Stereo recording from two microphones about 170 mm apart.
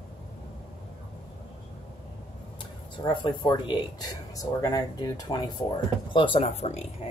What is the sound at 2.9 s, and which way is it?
Speech, 30° left (ahead or behind).